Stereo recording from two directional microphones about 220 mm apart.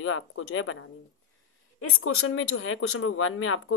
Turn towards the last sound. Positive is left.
turn(degrees=70)  # may be behind; listen again after turning